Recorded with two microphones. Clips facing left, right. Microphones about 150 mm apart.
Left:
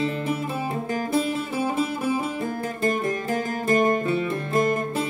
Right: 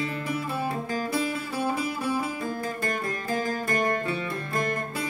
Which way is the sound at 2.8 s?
25° left (ahead or behind).